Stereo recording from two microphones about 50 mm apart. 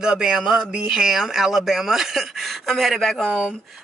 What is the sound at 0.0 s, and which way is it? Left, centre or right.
Speech, centre.